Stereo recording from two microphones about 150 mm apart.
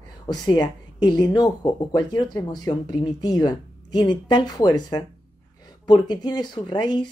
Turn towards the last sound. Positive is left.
turn(degrees=30)  # may be behind; listen again after turning